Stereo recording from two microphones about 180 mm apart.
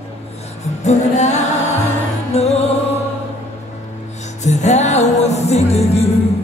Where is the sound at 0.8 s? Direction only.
40° left (ahead or behind).